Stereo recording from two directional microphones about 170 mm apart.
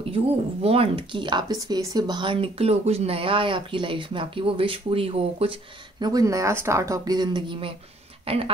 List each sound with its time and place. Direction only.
0.1 s speech: 35° right (ahead or behind)